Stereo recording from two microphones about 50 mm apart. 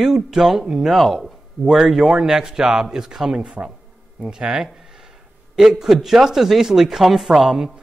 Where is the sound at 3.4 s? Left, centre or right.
Right.